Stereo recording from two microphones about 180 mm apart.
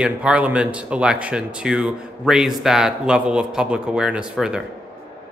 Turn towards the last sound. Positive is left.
turn(degrees=-5)  # may be behind; listen again after turning